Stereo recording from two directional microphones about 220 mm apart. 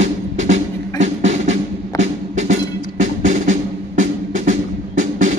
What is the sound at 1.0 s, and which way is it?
Music, 30° right (ahead or behind).